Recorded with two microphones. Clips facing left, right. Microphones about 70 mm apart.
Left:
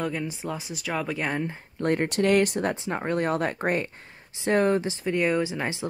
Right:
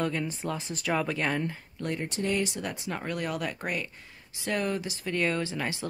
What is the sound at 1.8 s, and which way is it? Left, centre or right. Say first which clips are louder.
Speech: left 9 dB; left.